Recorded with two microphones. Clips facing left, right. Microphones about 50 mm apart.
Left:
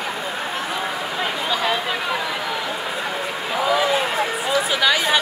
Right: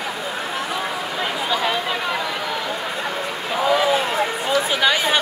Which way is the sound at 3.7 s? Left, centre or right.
Centre.